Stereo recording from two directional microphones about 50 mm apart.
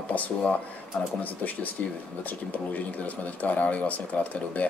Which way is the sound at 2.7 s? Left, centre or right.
Left.